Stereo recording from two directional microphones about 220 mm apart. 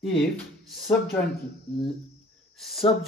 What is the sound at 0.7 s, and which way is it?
Speech, centre (ahead or behind).